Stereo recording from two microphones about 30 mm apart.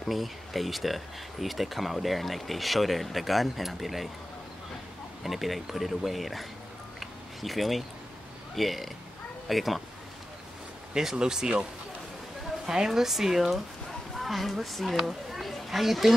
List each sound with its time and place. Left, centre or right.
0.0 s speech: centre
5.2 s speech: centre
7.0 s a sound: centre
8.5 s speech: centre
11.1 s speech: right
12.6 s speech: centre
15.7 s speech: centre